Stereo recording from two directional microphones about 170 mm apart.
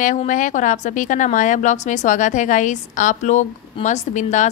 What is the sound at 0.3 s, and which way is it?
Speech, 50° left (ahead or behind).